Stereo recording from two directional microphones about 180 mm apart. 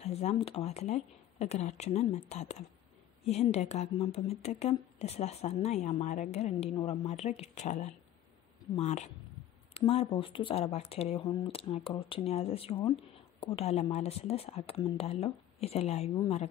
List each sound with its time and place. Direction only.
0.0 s speech: 35° left (ahead or behind)